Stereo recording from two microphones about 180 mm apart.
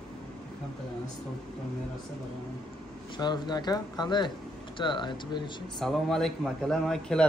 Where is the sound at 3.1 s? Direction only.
25° left (ahead or behind).